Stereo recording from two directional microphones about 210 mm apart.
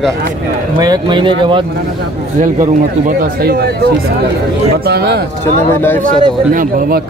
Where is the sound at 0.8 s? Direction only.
20° right (ahead or behind).